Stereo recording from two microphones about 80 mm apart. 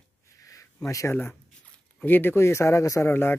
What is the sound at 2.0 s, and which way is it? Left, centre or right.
Speech, left.